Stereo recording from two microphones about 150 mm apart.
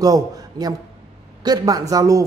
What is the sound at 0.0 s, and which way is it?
A man's voice, 25° right (ahead or behind).